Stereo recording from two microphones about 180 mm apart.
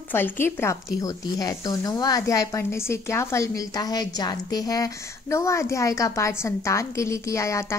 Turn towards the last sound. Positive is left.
turn(degrees=15)  # may be behind; listen again after turning